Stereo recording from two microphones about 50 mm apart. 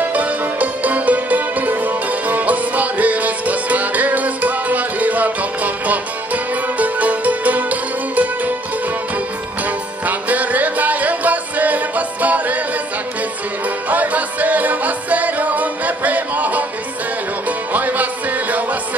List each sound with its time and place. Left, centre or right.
0.1 s music: right
10.0 s music: right
13.8 s music: right